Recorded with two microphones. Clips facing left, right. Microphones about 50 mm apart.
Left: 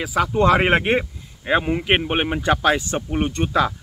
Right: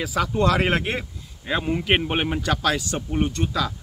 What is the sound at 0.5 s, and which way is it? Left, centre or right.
Speech, left.